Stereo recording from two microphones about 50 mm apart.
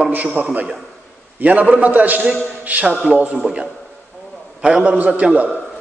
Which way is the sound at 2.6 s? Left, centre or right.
Right.